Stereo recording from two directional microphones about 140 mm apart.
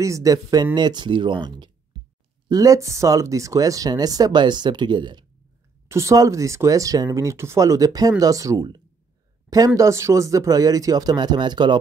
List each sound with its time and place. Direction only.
0.0 s speech: 25° right (ahead or behind)
5.9 s speech: 20° right (ahead or behind)